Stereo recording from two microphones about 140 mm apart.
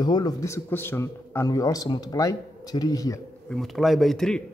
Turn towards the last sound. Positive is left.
turn(degrees=5)  # may be behind; listen again after turning